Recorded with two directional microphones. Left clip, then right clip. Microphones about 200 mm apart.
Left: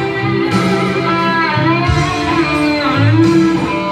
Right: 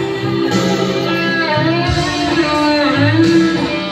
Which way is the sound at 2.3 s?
25° left (ahead or behind).